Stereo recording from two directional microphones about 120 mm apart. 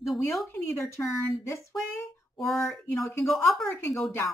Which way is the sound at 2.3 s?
Centre (ahead or behind).